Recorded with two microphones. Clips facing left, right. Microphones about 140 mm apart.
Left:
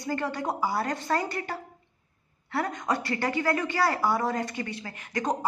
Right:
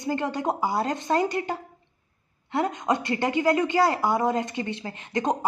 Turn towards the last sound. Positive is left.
turn(degrees=-20)  # may be behind; listen again after turning